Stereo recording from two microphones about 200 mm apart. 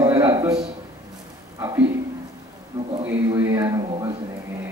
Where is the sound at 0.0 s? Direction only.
15° right (ahead or behind).